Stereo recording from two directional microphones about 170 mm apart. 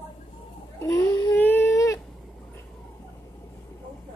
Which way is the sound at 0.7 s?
15° left (ahead or behind).